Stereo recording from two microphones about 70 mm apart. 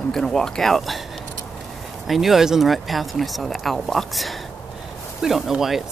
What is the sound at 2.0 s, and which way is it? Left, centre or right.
Speech, centre.